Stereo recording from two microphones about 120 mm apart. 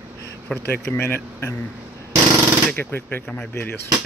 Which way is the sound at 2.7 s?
15° left (ahead or behind).